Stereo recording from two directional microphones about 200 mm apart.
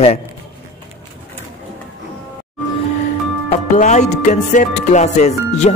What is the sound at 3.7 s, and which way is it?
A man's voice, 35° left (ahead or behind).